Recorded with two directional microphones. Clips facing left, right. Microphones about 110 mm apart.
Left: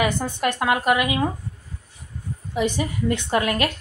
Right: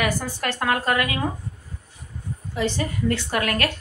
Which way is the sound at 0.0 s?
20° left (ahead or behind).